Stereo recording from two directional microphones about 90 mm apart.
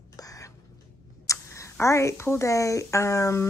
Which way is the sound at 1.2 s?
35° left (ahead or behind).